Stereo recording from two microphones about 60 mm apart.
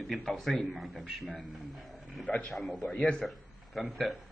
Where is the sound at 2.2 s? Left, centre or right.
Left.